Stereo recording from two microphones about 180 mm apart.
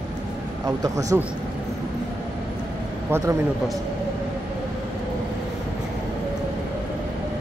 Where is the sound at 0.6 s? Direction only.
20° right (ahead or behind).